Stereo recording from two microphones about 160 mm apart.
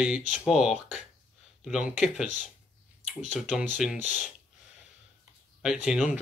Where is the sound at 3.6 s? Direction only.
5° right (ahead or behind).